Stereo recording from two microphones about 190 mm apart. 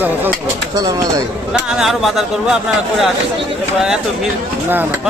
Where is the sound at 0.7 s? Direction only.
20° right (ahead or behind).